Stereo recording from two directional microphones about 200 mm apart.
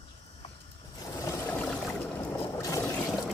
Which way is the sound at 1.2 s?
15° left (ahead or behind).